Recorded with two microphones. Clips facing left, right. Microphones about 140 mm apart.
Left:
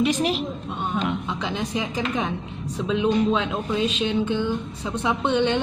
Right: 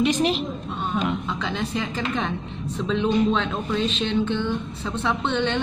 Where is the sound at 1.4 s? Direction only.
15° left (ahead or behind).